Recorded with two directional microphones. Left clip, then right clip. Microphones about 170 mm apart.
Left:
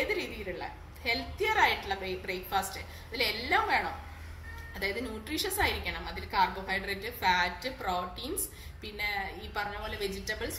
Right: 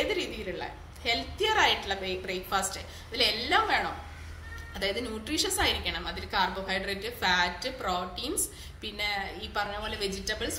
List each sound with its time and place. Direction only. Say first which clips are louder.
0.1 s a woman's voice: right 2 dB; 15° right (ahead or behind)